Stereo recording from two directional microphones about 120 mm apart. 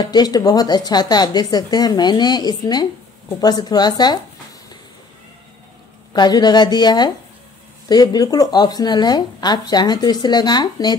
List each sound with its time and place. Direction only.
0.0 s speech: 35° left (ahead or behind)
6.1 s speech: 35° left (ahead or behind)